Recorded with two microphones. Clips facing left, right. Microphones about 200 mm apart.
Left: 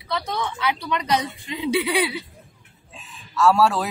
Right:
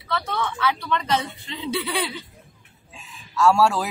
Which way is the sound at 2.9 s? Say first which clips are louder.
Even; centre (ahead or behind).